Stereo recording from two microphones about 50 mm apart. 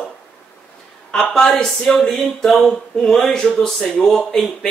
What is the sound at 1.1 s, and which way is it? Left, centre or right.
Speech, centre.